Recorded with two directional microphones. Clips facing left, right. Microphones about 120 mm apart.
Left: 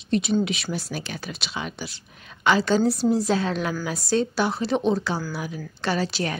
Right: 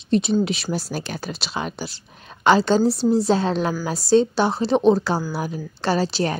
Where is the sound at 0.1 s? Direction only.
30° right (ahead or behind).